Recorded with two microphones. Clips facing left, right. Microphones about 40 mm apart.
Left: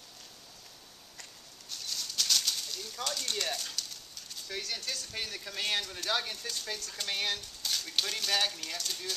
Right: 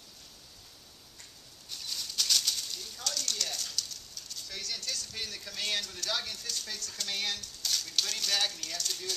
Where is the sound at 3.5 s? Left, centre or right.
Centre.